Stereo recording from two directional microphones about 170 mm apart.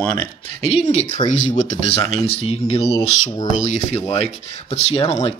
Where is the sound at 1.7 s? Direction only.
35° left (ahead or behind).